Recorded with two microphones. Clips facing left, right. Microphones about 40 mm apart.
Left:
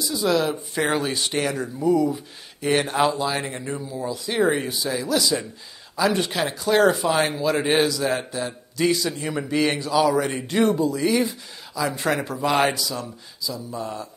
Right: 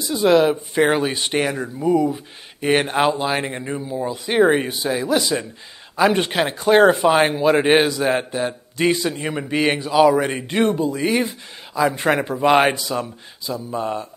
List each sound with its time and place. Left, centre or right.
0.0 s speech: right